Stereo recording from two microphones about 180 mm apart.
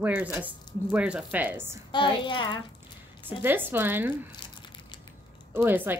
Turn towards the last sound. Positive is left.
turn(degrees=-10)  # may be behind; listen again after turning